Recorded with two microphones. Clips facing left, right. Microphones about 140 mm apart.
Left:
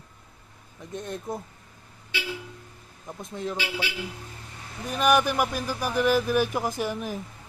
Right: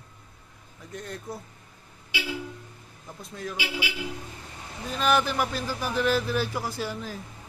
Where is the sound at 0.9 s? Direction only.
20° left (ahead or behind).